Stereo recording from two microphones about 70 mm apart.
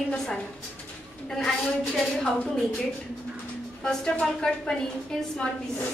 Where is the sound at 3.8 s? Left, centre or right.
Centre.